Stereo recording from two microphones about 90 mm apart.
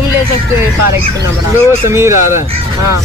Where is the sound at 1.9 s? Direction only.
30° right (ahead or behind).